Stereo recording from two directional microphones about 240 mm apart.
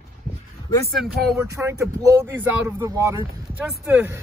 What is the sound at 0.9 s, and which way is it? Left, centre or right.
Speech, centre.